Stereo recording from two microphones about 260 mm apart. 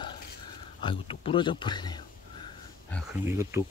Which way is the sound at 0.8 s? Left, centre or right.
Centre.